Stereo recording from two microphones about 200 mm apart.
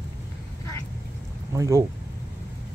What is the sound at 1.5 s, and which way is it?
Speech, 15° right (ahead or behind).